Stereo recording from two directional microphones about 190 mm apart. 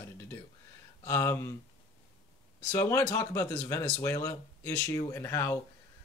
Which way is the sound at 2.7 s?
15° left (ahead or behind).